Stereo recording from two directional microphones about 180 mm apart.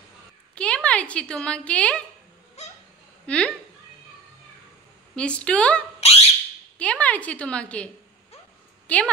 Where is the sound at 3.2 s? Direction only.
5° left (ahead or behind).